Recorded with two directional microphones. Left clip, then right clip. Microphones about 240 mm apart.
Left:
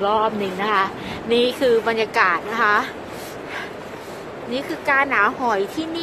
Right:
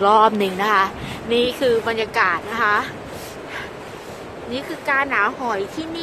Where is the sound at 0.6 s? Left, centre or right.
Centre.